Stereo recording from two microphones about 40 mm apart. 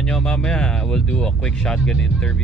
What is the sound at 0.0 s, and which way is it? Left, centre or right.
Speech, centre.